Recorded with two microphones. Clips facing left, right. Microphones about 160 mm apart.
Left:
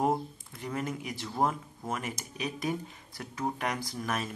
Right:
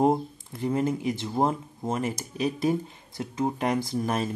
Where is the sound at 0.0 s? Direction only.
30° right (ahead or behind).